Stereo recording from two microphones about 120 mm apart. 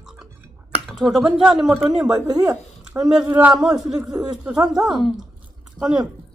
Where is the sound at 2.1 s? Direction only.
30° right (ahead or behind).